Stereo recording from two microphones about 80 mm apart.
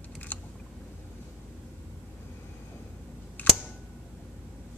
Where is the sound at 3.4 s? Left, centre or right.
Left.